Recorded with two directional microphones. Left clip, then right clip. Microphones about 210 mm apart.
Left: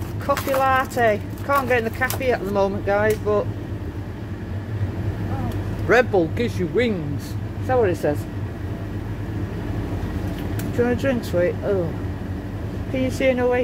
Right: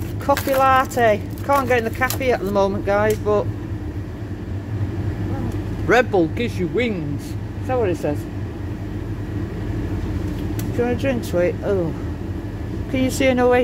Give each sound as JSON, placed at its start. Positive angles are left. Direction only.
{"t": 0.3, "sound": "speech", "side_deg": -15}
{"t": 5.9, "sound": "speech", "side_deg": -5}
{"t": 10.8, "sound": "speech", "side_deg": 0}
{"t": 11.3, "sound": "speech", "side_deg": -10}
{"t": 12.9, "sound": "speech", "side_deg": -25}